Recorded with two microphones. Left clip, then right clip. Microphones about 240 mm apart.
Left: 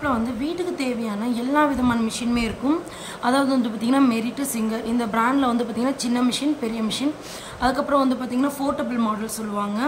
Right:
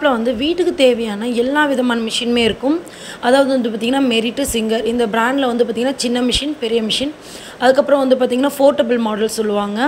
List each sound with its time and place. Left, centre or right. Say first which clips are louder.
0.0 s a woman's voice: right 9 dB; centre